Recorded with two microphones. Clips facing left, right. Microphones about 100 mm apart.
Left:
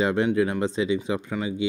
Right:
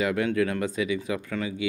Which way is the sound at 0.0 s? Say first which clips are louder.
Left 3 dB; 25° left (ahead or behind).